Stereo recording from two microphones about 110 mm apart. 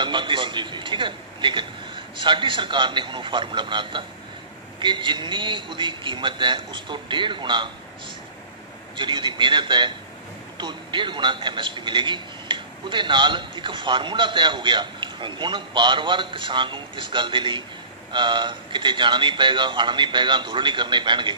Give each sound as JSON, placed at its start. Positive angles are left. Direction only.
{"t": 0.0, "sound": "a man's voice", "side_deg": -45}
{"t": 8.9, "sound": "a man's voice", "side_deg": -45}